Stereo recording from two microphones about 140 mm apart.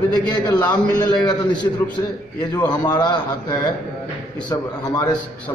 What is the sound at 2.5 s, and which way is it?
Speech, 30° left (ahead or behind).